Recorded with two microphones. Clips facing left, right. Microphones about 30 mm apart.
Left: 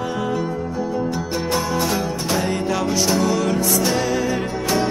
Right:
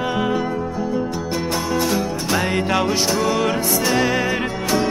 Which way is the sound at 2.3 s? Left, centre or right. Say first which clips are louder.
Right 2 dB; right.